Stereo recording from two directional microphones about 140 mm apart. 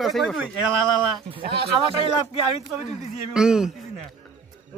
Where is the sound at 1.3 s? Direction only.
40° right (ahead or behind).